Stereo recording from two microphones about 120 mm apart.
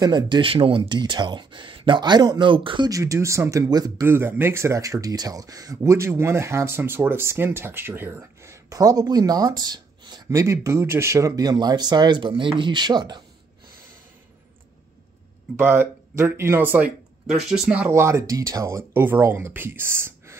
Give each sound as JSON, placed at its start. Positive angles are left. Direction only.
{"t": 0.0, "sound": "speech", "side_deg": -40}
{"t": 2.9, "sound": "speech", "side_deg": -25}
{"t": 4.0, "sound": "speech", "side_deg": -20}
{"t": 10.4, "sound": "speech", "side_deg": -25}
{"t": 15.5, "sound": "speech", "side_deg": -15}
{"t": 17.4, "sound": "speech", "side_deg": -5}
{"t": 17.9, "sound": "speech", "side_deg": -25}